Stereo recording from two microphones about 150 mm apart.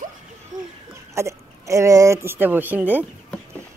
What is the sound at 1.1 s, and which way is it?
A woman's voice, 20° right (ahead or behind).